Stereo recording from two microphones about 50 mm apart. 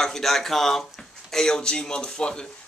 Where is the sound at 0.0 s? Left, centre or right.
Centre.